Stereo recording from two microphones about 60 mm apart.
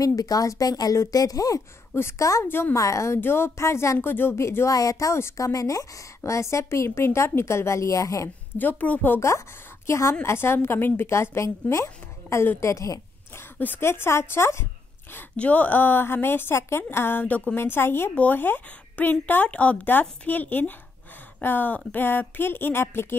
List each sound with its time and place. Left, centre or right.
0.0 s speech: left
2.1 s a woman's voice: left
2.4 s a woman's voice: left
2.7 s a woman's voice: left
3.2 s a woman's voice: left
4.0 s a woman's voice: left
4.7 s a woman's voice: left
8.5 s a woman's voice: left
9.8 s a woman's voice: left
13.4 s a woman's voice: left
15.3 s a woman's voice: left
18.1 s a woman's voice: left